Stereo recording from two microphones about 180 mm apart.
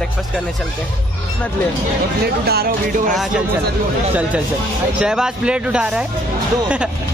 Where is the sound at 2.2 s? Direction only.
60° right (ahead or behind).